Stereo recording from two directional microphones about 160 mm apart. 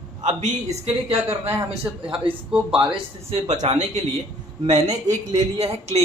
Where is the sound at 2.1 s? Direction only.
5° right (ahead or behind).